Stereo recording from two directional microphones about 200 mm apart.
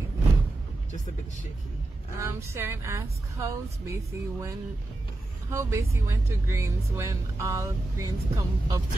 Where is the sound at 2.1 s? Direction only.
15° right (ahead or behind).